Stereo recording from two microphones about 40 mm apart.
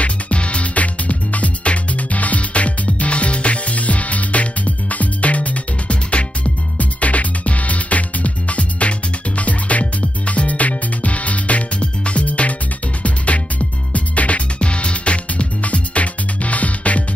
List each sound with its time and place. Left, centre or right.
0.0 s music: left